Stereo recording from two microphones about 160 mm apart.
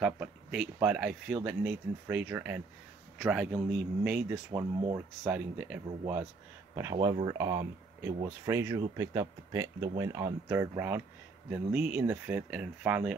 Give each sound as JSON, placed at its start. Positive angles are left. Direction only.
{"t": 0.0, "sound": "speech", "side_deg": -5}
{"t": 3.2, "sound": "speech", "side_deg": 0}